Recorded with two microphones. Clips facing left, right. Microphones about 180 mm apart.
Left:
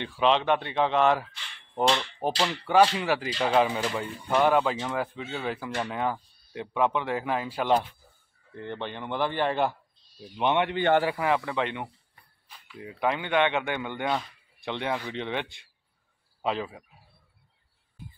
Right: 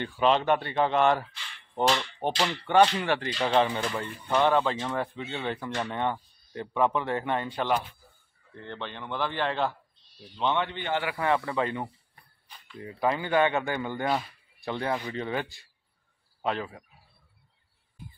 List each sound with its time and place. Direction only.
0.0 s hammer: centre (ahead or behind)
8.6 s a man's voice: 15° left (ahead or behind)
10.7 s a man's voice: 65° left (ahead or behind)
11.1 s hammer: 5° left (ahead or behind)
12.4 s speech: 5° left (ahead or behind)
15.0 s hammer: 5° right (ahead or behind)
16.4 s a man's voice: 10° left (ahead or behind)